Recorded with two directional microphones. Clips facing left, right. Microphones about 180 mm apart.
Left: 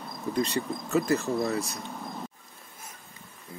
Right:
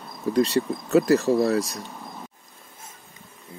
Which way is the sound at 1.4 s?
35° right (ahead or behind).